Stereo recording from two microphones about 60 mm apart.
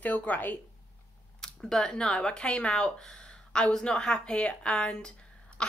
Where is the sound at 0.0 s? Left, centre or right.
Left.